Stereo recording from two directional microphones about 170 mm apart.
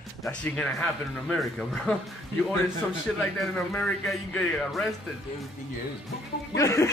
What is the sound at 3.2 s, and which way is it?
Speech, 5° left (ahead or behind).